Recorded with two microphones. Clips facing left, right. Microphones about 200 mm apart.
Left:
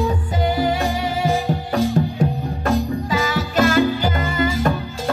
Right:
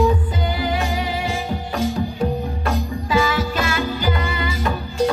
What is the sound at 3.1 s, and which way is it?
Music, 40° left (ahead or behind).